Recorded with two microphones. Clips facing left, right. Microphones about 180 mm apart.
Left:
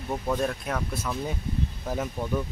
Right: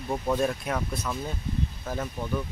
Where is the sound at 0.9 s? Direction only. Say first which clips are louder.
Even; 5° left (ahead or behind).